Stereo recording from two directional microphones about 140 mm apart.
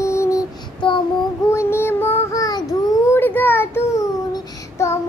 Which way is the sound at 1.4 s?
20° left (ahead or behind).